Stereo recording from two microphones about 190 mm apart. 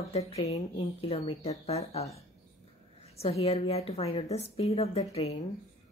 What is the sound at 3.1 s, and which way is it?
A woman's voice, 30° left (ahead or behind).